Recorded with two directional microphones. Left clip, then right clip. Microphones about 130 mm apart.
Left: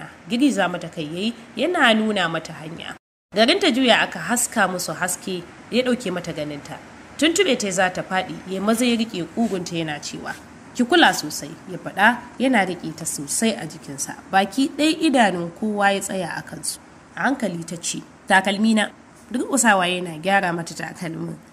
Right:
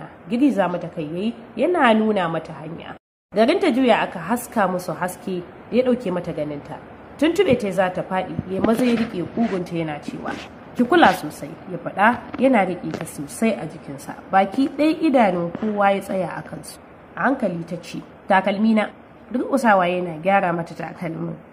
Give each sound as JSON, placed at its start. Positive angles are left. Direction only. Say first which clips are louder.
{"t": 0.3, "sound": "a woman's voice", "louder": "right 1 dB", "side_deg": 20}
{"t": 5.2, "sound": "a woman's voice", "louder": "right 1 dB", "side_deg": 15}
{"t": 10.8, "sound": "a woman's voice", "louder": "right 1 dB", "side_deg": 15}